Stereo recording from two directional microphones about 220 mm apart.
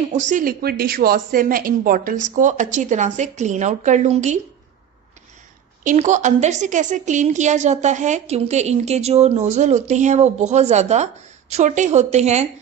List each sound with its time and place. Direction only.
0.1 s a woman's voice: 35° right (ahead or behind)
5.9 s a woman's voice: 35° right (ahead or behind)